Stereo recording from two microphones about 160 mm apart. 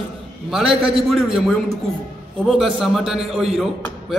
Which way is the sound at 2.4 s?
Centre (ahead or behind).